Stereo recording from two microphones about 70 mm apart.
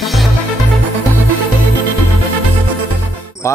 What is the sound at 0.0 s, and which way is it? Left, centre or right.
Music, centre.